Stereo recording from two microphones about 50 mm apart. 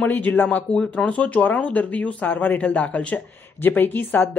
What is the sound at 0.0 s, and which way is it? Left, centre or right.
Speech, left.